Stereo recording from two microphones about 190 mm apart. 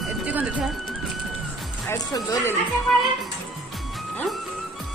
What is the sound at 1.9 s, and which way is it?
Speech, 15° left (ahead or behind).